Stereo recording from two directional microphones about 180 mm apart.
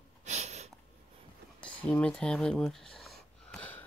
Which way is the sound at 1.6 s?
5° left (ahead or behind).